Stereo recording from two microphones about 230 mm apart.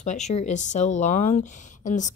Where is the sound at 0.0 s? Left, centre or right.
Left.